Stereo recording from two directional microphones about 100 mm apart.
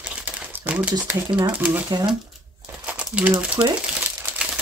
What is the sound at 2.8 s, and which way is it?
Crumpling, 15° right (ahead or behind).